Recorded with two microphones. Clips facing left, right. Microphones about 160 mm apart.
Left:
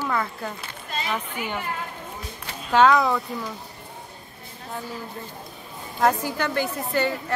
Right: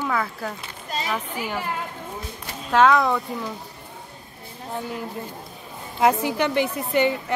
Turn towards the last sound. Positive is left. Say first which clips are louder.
# right 3 dB
turn(degrees=-20)  # may be behind; listen again after turning